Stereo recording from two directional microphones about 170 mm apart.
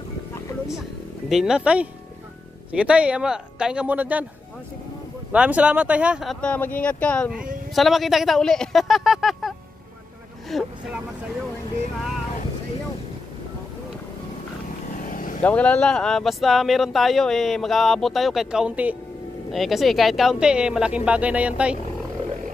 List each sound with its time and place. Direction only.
1.3 s a man's voice: 5° right (ahead or behind)
5.3 s a man's voice: 5° right (ahead or behind)
6.4 s speech: 10° left (ahead or behind)
10.5 s speech: centre (ahead or behind)
15.0 s vehicle: 50° left (ahead or behind)
15.4 s speech: 10° left (ahead or behind)